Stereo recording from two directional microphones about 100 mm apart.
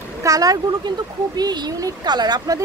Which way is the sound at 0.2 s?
35° right (ahead or behind).